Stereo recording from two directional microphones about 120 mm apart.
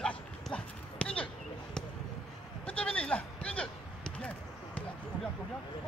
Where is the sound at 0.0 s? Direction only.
10° left (ahead or behind).